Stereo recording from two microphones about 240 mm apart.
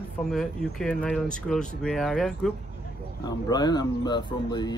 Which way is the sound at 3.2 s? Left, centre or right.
Centre.